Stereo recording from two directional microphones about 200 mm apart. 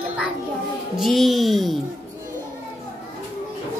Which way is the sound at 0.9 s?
Centre (ahead or behind).